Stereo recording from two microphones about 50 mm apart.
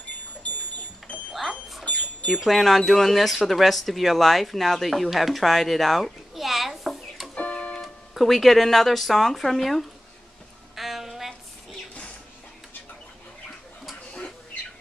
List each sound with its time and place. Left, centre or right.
2.2 s speech: centre
7.3 s tick-tock: left
7.8 s speech: centre
10.8 s a sound: centre